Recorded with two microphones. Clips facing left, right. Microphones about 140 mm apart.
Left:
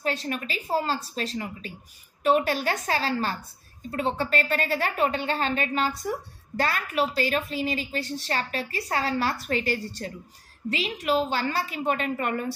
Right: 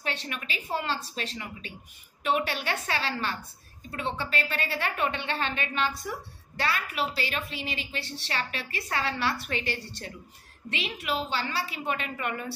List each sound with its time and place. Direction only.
0.0 s a woman's voice: 40° left (ahead or behind)